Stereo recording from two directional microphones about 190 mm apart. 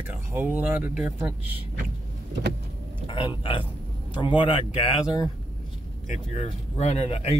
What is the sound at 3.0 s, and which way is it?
Speech, 30° left (ahead or behind).